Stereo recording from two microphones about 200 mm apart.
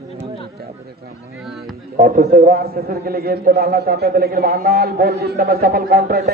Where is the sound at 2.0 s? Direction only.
40° right (ahead or behind).